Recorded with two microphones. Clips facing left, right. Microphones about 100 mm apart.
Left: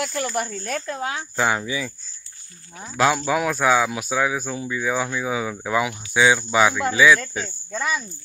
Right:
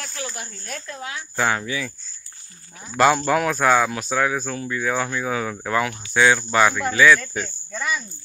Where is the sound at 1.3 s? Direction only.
10° left (ahead or behind).